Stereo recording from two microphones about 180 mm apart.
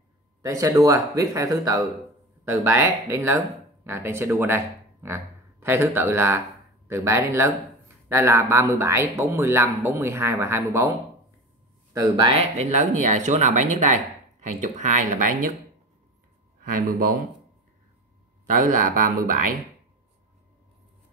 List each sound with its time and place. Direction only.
0.4 s speech: 20° right (ahead or behind)
11.9 s speech: 20° right (ahead or behind); by 15.5 s 45° right (ahead or behind)
16.6 s speech: 50° right (ahead or behind)
18.5 s speech: 45° right (ahead or behind)